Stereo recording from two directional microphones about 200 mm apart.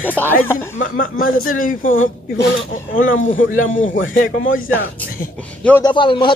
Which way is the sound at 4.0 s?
45° left (ahead or behind).